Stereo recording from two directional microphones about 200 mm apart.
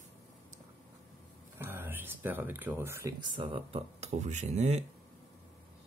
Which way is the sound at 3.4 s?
25° right (ahead or behind).